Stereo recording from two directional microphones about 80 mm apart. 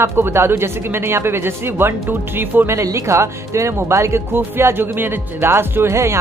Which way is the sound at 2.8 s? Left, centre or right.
Right.